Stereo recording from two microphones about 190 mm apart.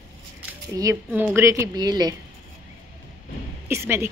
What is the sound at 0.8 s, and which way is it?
Speech, 15° right (ahead or behind).